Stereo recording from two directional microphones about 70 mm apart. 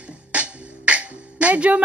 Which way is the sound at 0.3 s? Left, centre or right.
Centre.